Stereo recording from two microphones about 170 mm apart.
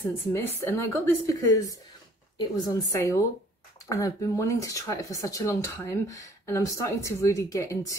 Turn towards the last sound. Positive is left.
turn(degrees=20)  # may be behind; listen again after turning